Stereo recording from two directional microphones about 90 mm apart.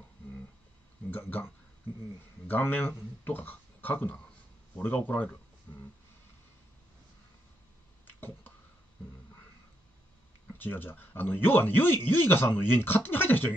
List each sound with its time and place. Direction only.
1.1 s a man's voice: 20° left (ahead or behind)
10.6 s a man's voice: 20° left (ahead or behind)